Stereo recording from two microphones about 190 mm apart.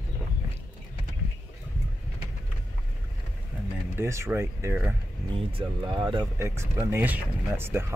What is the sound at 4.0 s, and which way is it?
Speech, 15° right (ahead or behind).